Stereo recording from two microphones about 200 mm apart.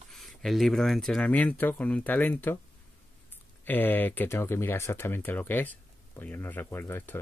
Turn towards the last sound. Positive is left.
turn(degrees=10)  # may be behind; listen again after turning